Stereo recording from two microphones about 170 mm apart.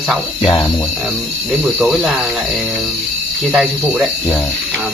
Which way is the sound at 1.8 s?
Centre (ahead or behind).